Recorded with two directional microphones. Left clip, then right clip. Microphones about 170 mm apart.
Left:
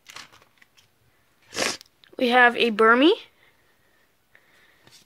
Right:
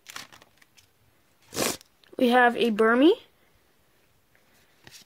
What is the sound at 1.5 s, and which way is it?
Zipper, 35° right (ahead or behind).